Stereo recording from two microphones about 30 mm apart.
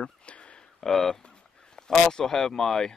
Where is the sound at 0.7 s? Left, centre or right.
Centre.